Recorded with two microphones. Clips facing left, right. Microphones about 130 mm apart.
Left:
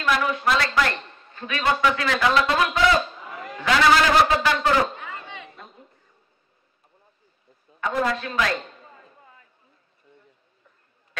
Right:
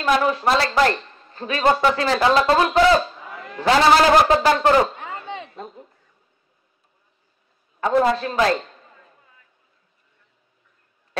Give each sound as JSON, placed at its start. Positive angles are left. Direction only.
{"t": 0.0, "sound": "a woman's voice", "side_deg": -35}
{"t": 7.8, "sound": "a woman's voice", "side_deg": -30}